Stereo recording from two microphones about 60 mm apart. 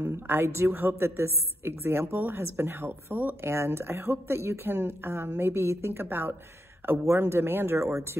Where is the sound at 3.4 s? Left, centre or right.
Right.